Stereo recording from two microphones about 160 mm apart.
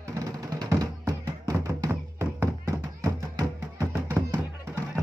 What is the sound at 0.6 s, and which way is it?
Music, 25° right (ahead or behind).